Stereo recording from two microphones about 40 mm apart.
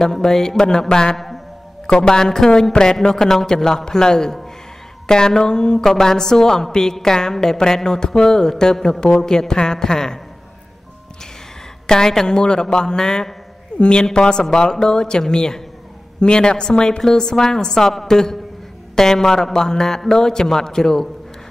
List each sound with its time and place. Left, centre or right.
0.0 s a woman's voice: centre
1.1 s a sound: centre
1.9 s a woman's voice: centre
11.9 s a woman's voice: centre